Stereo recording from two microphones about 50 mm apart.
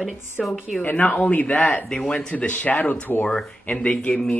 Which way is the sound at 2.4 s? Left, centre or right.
Left.